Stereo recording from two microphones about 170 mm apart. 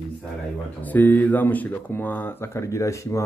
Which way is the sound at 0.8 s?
10° left (ahead or behind).